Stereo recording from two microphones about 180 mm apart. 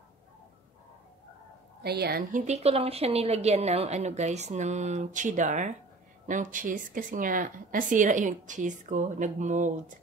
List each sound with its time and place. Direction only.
1.8 s a woman's voice: 60° right (ahead or behind)
2.4 s a woman's voice: 35° right (ahead or behind)